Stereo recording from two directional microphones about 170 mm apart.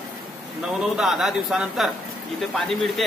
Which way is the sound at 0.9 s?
5° right (ahead or behind).